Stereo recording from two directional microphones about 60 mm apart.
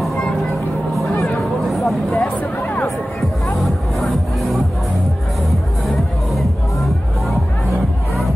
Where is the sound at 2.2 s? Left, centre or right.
Left.